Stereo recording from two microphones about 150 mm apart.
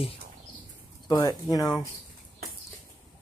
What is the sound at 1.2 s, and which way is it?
Speech, 25° left (ahead or behind).